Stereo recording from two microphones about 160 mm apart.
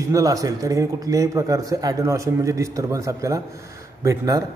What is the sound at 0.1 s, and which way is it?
A man's voice, 20° right (ahead or behind).